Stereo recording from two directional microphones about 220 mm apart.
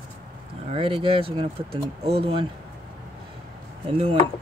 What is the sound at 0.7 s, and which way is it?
Speech, 25° right (ahead or behind).